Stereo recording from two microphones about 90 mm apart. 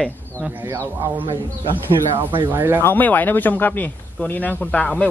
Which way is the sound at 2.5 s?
25° right (ahead or behind).